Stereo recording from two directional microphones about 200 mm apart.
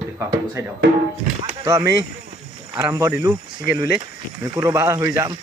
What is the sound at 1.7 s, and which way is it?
Speech, 20° right (ahead or behind).